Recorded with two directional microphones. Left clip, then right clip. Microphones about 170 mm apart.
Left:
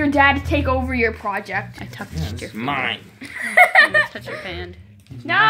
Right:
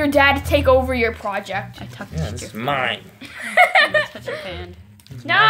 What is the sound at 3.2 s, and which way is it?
Speech, 10° left (ahead or behind).